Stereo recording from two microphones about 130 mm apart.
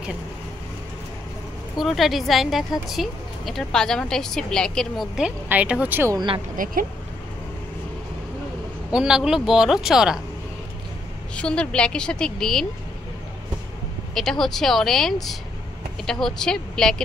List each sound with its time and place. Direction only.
1.8 s a woman's voice: centre (ahead or behind)
6.1 s speech: 40° right (ahead or behind)
6.5 s speech: 90° right
8.9 s a woman's voice: 5° right (ahead or behind)
11.3 s a woman's voice: 5° left (ahead or behind)
14.1 s a woman's voice: centre (ahead or behind)